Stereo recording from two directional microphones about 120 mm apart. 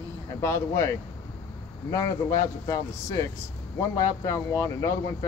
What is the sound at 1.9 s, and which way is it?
Speech, 30° left (ahead or behind).